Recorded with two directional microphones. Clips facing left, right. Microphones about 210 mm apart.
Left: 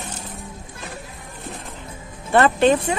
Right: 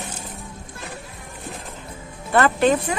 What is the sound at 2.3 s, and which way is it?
Speech, 25° left (ahead or behind).